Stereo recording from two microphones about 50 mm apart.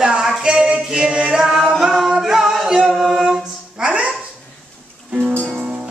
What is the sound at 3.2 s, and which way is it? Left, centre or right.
Speech, centre.